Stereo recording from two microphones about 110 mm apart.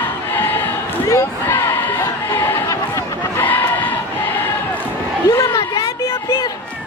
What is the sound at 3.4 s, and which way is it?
Crowd, 15° left (ahead or behind).